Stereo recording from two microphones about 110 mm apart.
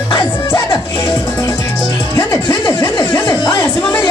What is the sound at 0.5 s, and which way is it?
Music, 45° left (ahead or behind).